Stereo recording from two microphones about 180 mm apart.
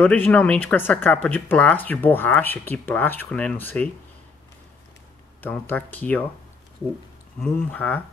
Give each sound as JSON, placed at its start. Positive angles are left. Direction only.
{"t": 0.0, "sound": "speech", "side_deg": 10}
{"t": 5.4, "sound": "speech", "side_deg": 10}
{"t": 7.3, "sound": "speech", "side_deg": 5}